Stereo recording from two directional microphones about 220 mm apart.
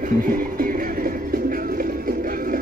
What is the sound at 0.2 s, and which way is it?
Music, 40° right (ahead or behind).